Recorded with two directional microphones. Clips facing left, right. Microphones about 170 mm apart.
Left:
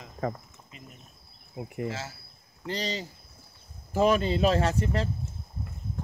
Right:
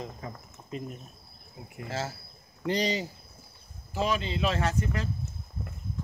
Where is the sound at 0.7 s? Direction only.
40° right (ahead or behind).